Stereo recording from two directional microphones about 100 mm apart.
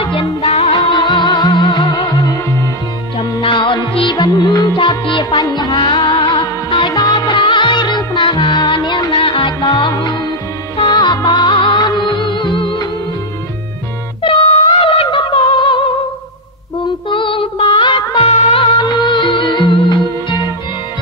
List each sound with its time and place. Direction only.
0.0 s music: 60° left (ahead or behind)
1.2 s music: 35° left (ahead or behind)
3.2 s music: 60° left (ahead or behind)
5.3 s music: 40° left (ahead or behind)
5.8 s music: 50° left (ahead or behind)
14.2 s music: 60° left (ahead or behind)
17.1 s music: 60° left (ahead or behind)